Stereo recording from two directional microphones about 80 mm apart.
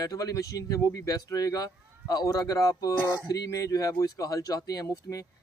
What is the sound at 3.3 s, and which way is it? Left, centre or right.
Speech, left.